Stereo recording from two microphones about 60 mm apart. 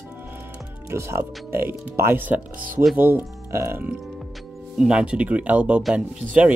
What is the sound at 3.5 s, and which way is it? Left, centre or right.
Music, right.